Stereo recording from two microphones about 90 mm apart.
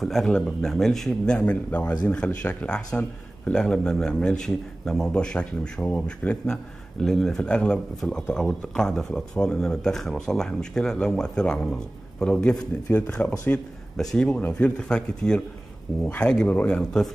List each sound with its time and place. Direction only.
0.0 s speech: centre (ahead or behind); by 13.6 s 20° left (ahead or behind)
13.9 s speech: 5° left (ahead or behind)